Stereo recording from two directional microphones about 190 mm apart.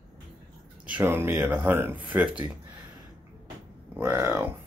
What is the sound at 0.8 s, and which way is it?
Speech, 10° right (ahead or behind).